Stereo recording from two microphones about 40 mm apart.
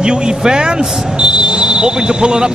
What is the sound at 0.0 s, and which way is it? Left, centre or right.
Speech, right.